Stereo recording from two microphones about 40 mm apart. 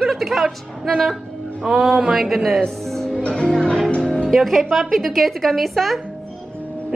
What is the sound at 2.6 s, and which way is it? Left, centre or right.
Speech, centre.